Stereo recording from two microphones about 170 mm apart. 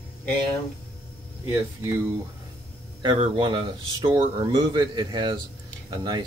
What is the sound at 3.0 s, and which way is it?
Speech, 30° right (ahead or behind).